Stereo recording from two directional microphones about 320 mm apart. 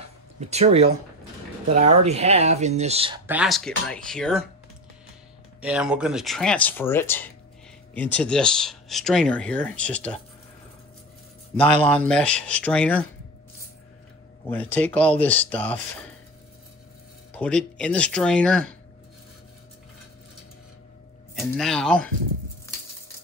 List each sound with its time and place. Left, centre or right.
0.4 s speech: centre
3.3 s speech: centre
5.6 s speech: centre
11.5 s speech: centre
14.4 s speech: centre
17.3 s speech: centre
21.4 s speech: centre